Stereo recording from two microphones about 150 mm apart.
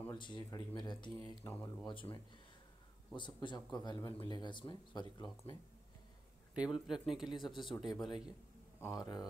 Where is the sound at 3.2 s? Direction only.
30° left (ahead or behind).